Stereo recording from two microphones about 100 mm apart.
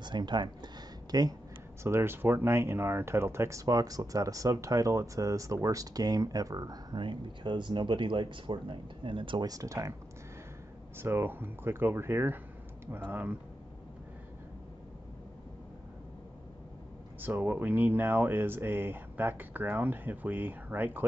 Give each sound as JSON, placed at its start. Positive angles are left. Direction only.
{"t": 0.0, "sound": "speech", "side_deg": -50}
{"t": 1.8, "sound": "speech", "side_deg": -25}
{"t": 7.0, "sound": "speech", "side_deg": -55}
{"t": 9.5, "sound": "speech", "side_deg": -35}
{"t": 11.0, "sound": "speech", "side_deg": -25}
{"t": 17.2, "sound": "speech", "side_deg": -20}